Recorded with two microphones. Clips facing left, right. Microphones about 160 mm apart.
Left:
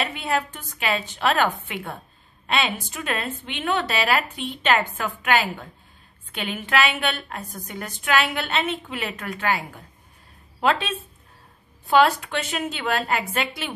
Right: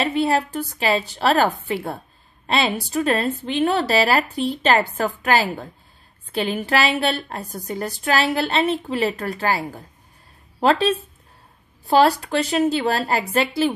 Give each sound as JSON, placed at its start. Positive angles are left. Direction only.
{"t": 0.0, "sound": "a woman's voice", "side_deg": -35}